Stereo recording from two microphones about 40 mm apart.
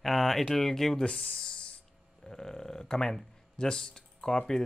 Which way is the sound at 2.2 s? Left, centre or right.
Centre.